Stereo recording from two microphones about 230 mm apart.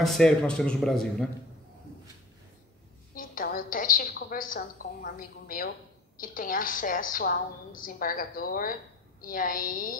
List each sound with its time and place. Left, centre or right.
0.0 s a man's voice: centre
3.2 s a woman's voice: left